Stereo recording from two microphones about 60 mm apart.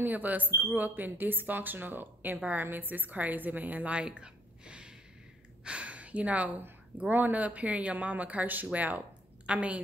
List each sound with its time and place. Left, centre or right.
0.0 s speech: right